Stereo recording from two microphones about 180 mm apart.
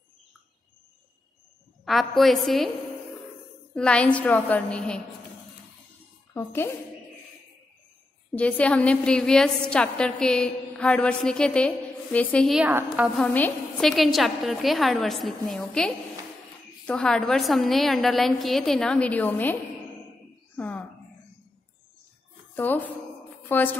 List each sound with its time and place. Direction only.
1.9 s a woman's voice: centre (ahead or behind)
3.7 s a woman's voice: 5° left (ahead or behind)
6.3 s a woman's voice: 15° left (ahead or behind)
8.4 s a woman's voice: 5° left (ahead or behind)
12.5 s a woman's voice: 10° right (ahead or behind)
13.2 s a woman's voice: 5° left (ahead or behind)
20.5 s a sound: 10° left (ahead or behind)
22.6 s a woman's voice: 10° left (ahead or behind)